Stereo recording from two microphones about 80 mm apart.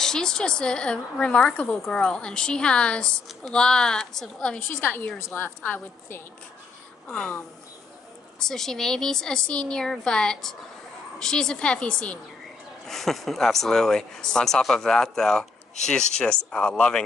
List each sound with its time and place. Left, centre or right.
0.0 s a woman's voice: centre; by 6.2 s left
7.1 s speech: centre
12.8 s speech: centre